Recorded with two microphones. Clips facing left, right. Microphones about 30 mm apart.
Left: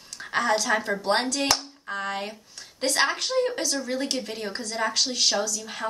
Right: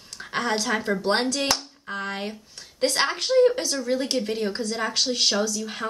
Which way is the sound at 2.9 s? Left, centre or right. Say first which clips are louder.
Even; centre.